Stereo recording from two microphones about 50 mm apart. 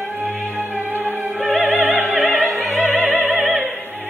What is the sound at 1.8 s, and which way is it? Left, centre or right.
Opera, right.